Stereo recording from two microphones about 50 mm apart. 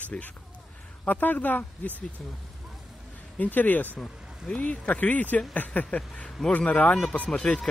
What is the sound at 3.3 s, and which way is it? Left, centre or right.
Speech, left.